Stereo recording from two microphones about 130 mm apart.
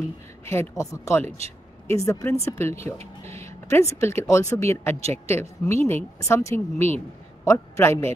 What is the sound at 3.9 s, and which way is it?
A woman's voice, 20° left (ahead or behind).